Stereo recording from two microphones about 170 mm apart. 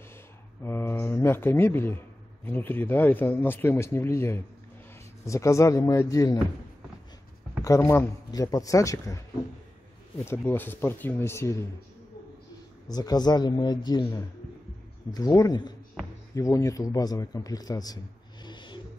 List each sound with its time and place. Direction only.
0.6 s a man's voice: 15° left (ahead or behind)
7.6 s speech: 15° left (ahead or behind)
12.9 s a man's voice: 25° left (ahead or behind)